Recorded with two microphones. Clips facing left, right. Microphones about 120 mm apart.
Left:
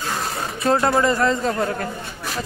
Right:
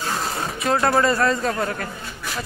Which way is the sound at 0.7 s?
20° left (ahead or behind).